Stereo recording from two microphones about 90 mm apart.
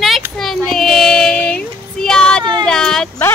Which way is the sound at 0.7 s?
5° left (ahead or behind).